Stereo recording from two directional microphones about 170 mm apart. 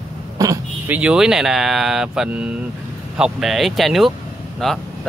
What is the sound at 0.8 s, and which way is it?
Speech, 5° right (ahead or behind).